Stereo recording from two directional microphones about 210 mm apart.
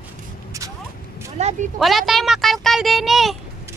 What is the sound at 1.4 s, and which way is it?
Speech, 30° right (ahead or behind).